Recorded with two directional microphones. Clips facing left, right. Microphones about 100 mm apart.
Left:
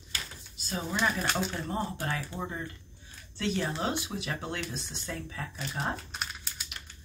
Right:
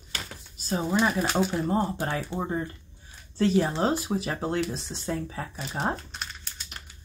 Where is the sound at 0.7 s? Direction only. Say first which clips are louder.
Right 6 dB; 30° right (ahead or behind).